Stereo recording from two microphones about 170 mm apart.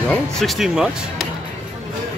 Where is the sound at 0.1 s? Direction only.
5° left (ahead or behind).